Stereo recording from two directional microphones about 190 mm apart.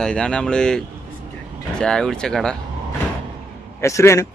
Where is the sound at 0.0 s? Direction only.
5° left (ahead or behind).